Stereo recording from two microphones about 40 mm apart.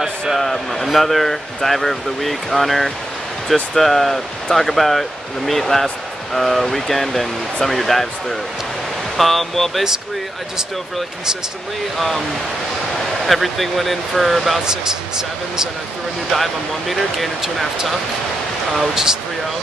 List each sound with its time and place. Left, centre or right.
0.4 s speech: centre
13.3 s speech: centre
14.7 s speech: centre
16.3 s speech: centre
18.7 s speech: centre